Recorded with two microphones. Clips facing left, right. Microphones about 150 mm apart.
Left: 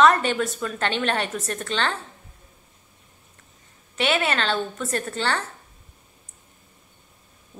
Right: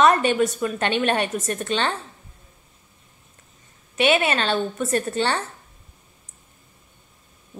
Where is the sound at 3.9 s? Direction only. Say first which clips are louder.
Right 4 dB; 20° right (ahead or behind).